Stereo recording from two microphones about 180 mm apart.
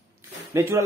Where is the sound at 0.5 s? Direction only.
15° right (ahead or behind).